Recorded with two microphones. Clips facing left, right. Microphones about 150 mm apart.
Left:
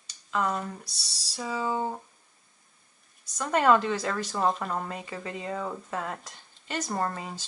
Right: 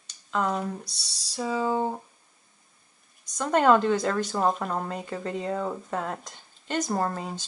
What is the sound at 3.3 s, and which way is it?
Speech, centre (ahead or behind).